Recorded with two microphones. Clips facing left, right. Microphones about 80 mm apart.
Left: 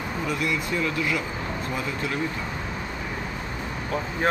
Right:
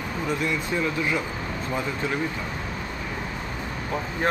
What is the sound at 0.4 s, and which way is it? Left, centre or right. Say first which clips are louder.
Speech: left 1 dB; right.